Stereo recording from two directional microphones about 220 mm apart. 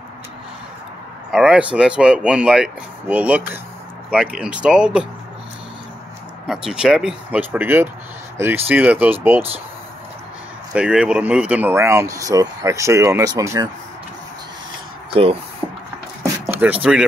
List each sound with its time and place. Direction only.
1.3 s speech: 5° right (ahead or behind)
6.4 s speech: centre (ahead or behind)
10.7 s speech: 5° right (ahead or behind)
15.0 s speech: 25° right (ahead or behind)
16.2 s a sound: 10° right (ahead or behind)